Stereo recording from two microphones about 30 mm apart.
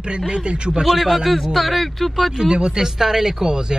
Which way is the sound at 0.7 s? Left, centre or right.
Centre.